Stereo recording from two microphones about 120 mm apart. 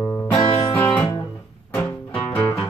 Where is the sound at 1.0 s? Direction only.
30° left (ahead or behind).